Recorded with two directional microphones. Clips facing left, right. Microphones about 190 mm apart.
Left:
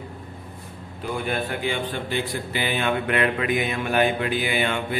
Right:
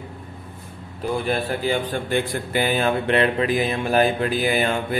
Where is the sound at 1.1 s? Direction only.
35° right (ahead or behind).